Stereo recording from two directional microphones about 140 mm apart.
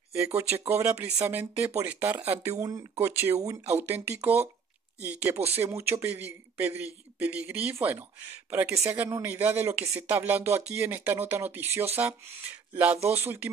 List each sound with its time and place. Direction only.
0.8 s speech: 10° right (ahead or behind)